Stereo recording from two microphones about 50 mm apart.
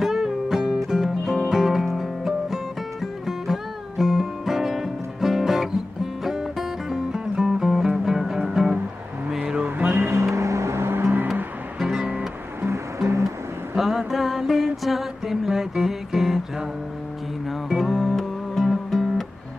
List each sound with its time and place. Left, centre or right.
0.0 s music: centre
9.6 s music: right
10.3 s vehicle: right
11.8 s music: centre
13.7 s a sound: centre
17.5 s music: centre